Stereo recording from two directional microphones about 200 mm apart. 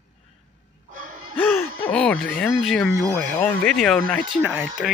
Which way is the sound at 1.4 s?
10° left (ahead or behind).